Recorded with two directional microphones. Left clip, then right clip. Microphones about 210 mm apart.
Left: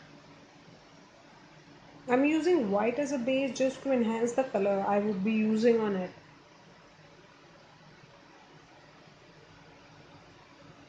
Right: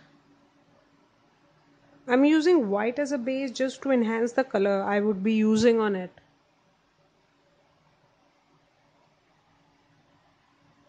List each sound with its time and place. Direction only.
2.0 s speech: 45° right (ahead or behind)